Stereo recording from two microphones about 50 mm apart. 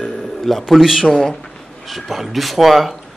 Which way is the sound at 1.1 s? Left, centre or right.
Centre.